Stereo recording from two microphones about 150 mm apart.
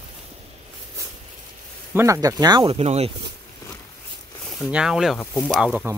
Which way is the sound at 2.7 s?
45° right (ahead or behind).